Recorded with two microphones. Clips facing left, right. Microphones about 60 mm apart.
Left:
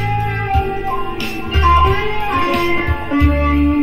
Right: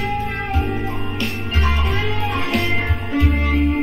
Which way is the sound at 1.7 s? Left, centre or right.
Left.